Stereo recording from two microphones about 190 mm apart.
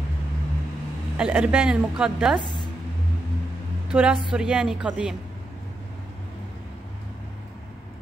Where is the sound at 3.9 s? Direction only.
5° right (ahead or behind).